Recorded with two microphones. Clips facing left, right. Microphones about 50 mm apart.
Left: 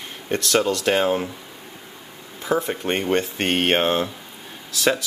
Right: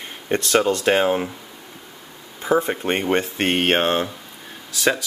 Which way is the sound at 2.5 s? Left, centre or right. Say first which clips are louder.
Right 3 dB; right.